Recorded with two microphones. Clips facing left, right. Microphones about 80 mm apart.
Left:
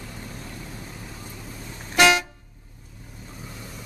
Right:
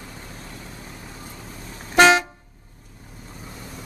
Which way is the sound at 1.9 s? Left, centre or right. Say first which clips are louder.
Right 4 dB; right.